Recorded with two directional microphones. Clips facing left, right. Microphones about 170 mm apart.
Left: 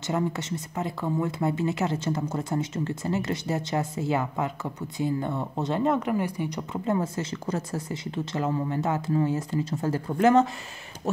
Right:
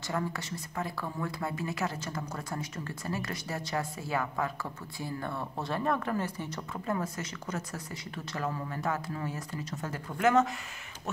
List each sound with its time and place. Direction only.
0.0 s speech: 20° left (ahead or behind)